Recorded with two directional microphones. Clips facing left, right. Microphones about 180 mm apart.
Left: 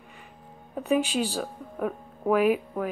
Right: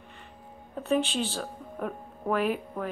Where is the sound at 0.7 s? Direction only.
10° left (ahead or behind).